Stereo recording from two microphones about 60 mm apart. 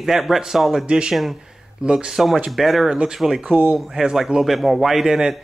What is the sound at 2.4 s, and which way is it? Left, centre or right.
Speech, centre.